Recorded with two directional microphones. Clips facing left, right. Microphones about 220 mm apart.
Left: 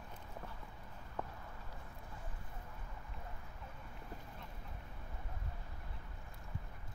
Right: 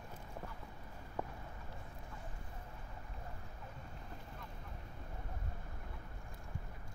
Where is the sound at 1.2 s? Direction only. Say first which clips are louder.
Right 2 dB; 10° right (ahead or behind).